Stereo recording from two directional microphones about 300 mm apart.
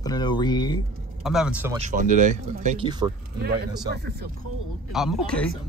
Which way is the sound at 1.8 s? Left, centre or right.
Right.